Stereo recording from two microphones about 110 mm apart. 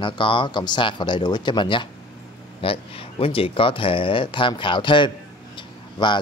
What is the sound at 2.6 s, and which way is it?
A man's voice, 55° left (ahead or behind).